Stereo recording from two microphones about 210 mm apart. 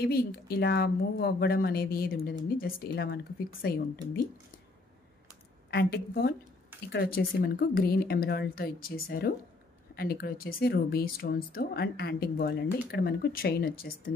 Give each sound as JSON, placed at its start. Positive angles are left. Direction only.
{"t": 0.0, "sound": "speech", "side_deg": 45}
{"t": 5.7, "sound": "speech", "side_deg": 50}
{"t": 7.3, "sound": "speech", "side_deg": 45}